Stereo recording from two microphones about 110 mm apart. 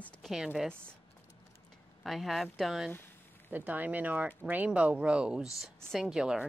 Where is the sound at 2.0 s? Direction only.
Centre (ahead or behind).